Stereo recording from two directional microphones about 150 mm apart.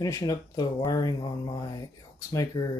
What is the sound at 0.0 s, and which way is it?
Speech, 25° left (ahead or behind).